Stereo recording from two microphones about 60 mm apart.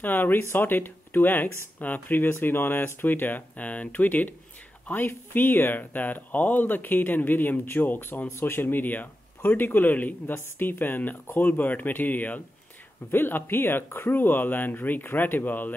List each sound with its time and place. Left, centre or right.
0.0 s speech: left